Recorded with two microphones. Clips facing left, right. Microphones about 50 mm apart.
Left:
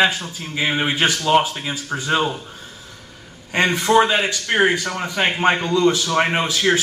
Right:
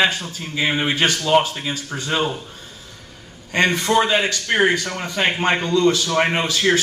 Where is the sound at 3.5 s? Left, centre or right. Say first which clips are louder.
Left 2 dB; left.